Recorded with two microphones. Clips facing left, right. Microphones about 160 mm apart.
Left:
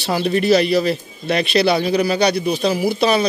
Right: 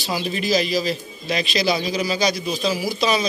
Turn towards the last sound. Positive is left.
turn(degrees=60)  # may be behind; listen again after turning